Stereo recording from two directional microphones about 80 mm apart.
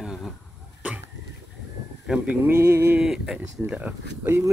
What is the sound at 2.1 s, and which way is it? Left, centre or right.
Speech, centre.